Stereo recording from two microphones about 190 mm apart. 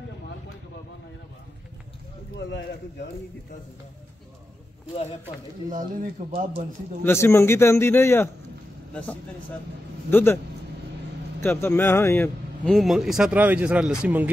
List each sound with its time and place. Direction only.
5.7 s speech: 45° right (ahead or behind)
7.0 s a man's voice: 15° left (ahead or behind)
10.1 s a man's voice: 10° left (ahead or behind)
11.4 s a man's voice: 10° left (ahead or behind)
12.6 s speech: centre (ahead or behind)